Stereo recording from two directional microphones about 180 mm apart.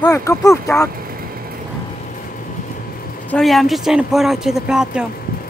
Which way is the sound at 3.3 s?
Centre (ahead or behind).